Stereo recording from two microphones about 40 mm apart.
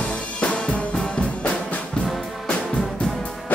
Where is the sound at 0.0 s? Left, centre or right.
Left.